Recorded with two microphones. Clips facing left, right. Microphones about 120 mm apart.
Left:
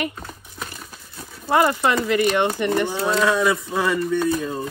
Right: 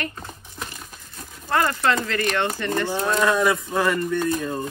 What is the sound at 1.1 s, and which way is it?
Speech, 10° left (ahead or behind).